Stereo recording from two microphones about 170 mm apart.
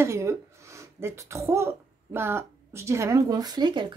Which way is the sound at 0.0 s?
15° right (ahead or behind).